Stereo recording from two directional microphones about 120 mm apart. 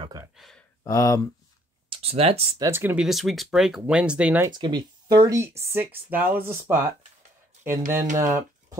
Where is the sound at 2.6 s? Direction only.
20° right (ahead or behind).